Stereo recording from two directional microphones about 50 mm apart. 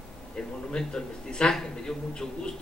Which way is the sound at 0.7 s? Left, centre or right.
Centre.